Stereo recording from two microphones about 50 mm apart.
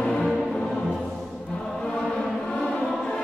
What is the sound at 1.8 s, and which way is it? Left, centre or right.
Choir, centre.